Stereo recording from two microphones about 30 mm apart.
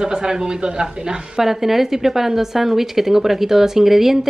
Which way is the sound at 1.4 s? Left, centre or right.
Centre.